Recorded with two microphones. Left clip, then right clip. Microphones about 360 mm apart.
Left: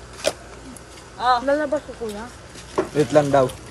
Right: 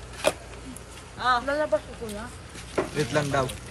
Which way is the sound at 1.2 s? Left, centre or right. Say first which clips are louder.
Left 5 dB; left.